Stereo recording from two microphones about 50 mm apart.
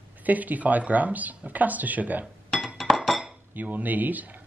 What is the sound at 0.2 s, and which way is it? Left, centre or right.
Speech, right.